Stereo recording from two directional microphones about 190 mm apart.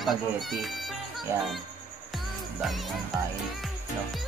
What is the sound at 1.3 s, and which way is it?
Speech, 15° right (ahead or behind).